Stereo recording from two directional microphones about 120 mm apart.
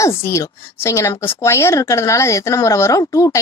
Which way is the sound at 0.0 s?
25° left (ahead or behind).